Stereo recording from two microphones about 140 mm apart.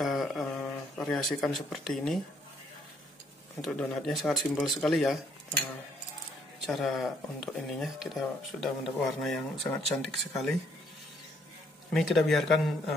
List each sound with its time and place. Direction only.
0.0 s a sound: centre (ahead or behind)
3.6 s speech: centre (ahead or behind)
6.6 s speech: centre (ahead or behind)
11.9 s speech: centre (ahead or behind)